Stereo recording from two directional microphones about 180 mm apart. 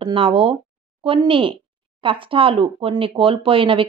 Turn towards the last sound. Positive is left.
turn(degrees=-30)  # may be behind; listen again after turning